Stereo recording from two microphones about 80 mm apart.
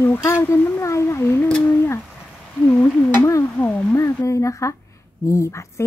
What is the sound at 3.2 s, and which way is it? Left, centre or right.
Speech, left.